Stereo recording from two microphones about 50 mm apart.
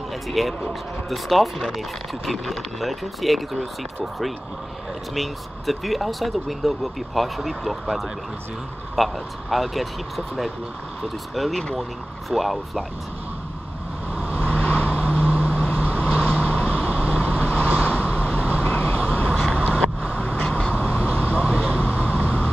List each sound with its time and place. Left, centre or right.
0.3 s speech: centre
5.1 s speech: centre
8.9 s speech: centre
14.2 s vehicle: left